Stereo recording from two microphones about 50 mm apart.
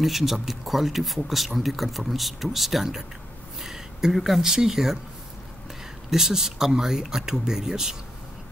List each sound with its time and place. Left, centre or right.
0.0 s speech: centre
6.0 s speech: centre